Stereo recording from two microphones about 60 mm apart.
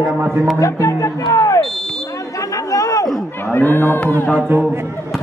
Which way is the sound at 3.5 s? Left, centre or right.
Left.